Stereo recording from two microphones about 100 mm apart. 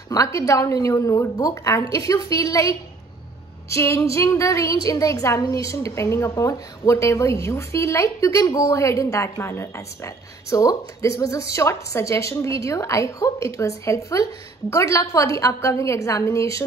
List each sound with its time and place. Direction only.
0.1 s a woman's voice: 35° left (ahead or behind)
3.7 s a woman's voice: 30° left (ahead or behind)